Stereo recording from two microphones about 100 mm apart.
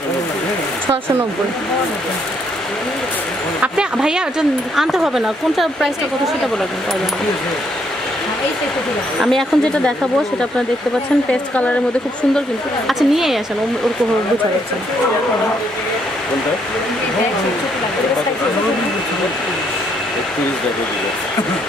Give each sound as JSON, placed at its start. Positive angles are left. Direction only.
{"t": 3.6, "sound": "speech", "side_deg": -10}
{"t": 9.2, "sound": "speech", "side_deg": 5}
{"t": 12.8, "sound": "speech", "side_deg": 0}